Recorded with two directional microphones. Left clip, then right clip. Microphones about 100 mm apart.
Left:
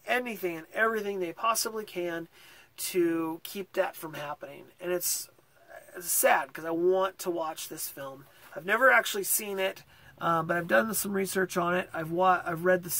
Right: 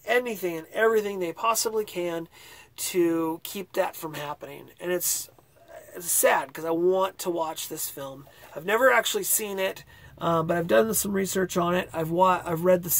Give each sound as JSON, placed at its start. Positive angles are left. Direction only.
{"t": 0.0, "sound": "speech", "side_deg": -15}